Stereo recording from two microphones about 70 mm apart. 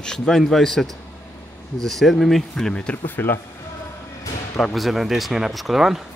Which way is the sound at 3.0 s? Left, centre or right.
Left.